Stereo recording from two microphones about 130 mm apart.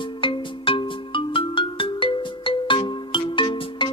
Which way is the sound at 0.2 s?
40° left (ahead or behind).